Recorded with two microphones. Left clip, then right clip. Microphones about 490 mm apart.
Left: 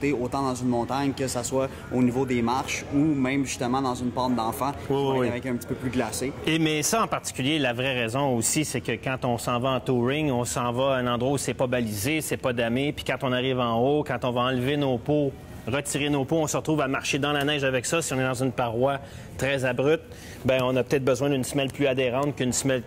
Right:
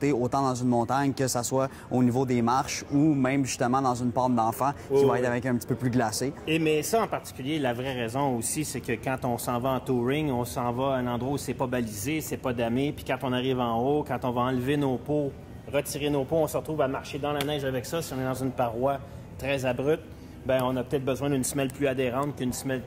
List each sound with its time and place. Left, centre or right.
0.0 s speech: right
6.4 s speech: left
15.7 s speech: left
21.3 s speech: left